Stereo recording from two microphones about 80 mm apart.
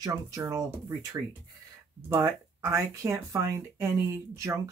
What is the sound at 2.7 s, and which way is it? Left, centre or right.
Speech, right.